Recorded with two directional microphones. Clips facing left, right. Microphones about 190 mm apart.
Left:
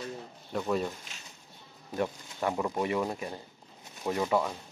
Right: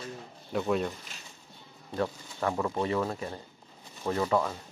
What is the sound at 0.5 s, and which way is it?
Speech, centre (ahead or behind).